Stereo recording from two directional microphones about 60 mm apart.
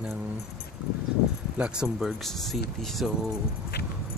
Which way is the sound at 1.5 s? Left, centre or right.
Centre.